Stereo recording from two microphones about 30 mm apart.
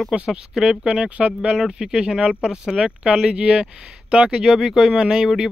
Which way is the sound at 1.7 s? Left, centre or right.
Right.